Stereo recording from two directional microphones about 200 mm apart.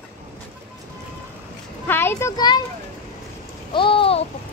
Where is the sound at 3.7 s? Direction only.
25° left (ahead or behind).